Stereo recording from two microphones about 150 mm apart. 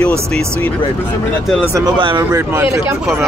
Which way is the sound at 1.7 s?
30° right (ahead or behind).